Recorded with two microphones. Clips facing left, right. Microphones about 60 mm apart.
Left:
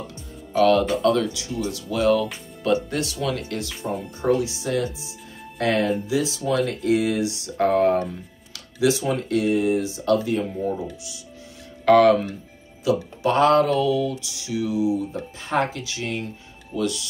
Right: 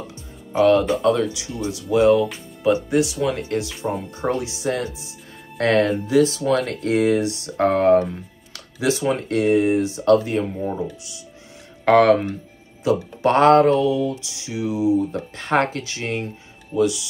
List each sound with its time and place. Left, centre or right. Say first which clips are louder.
0.6 s speech: right 2 dB; right
0.8 s speech: right 2 dB; centre
1.1 s speech: right 1 dB; centre
15.3 s speech: right 3 dB; right
16.7 s speech: right 6 dB; centre